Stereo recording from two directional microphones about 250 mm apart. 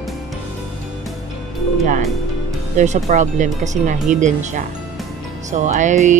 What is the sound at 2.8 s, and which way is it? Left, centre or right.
Speech, right.